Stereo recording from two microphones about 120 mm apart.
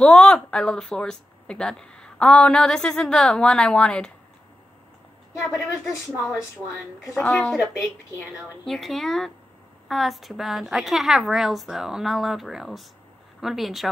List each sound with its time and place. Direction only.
0.0 s speech: 5° left (ahead or behind)
5.4 s speech: 25° left (ahead or behind)
7.2 s speech: 10° left (ahead or behind)
7.7 s speech: 25° left (ahead or behind)
8.6 s a woman's voice: centre (ahead or behind)